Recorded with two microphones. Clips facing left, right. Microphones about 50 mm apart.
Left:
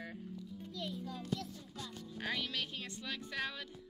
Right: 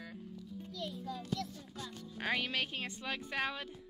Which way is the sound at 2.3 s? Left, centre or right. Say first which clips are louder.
Right 4 dB; right.